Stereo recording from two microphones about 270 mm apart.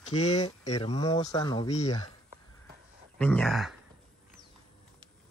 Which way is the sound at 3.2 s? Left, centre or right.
Centre.